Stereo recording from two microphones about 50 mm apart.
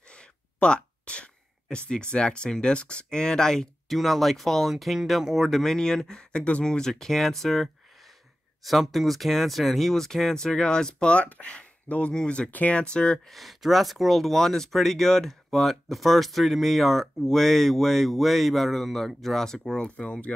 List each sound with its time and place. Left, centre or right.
0.1 s speech: centre
12.4 s speech: left
12.9 s speech: left
13.3 s speech: centre; by 20.3 s left